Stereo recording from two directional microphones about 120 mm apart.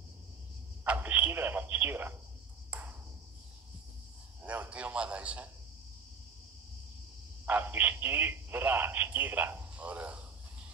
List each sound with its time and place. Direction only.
0.8 s radio: 15° right (ahead or behind)
2.7 s ping: 10° right (ahead or behind)
4.4 s a sound: 10° right (ahead or behind)
7.4 s speech: 15° right (ahead or behind)